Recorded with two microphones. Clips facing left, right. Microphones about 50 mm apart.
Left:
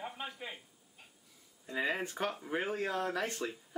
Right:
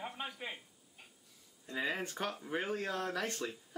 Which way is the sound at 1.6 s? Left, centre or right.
Centre.